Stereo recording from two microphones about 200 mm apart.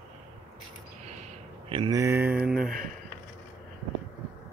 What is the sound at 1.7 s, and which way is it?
Speech, 25° right (ahead or behind).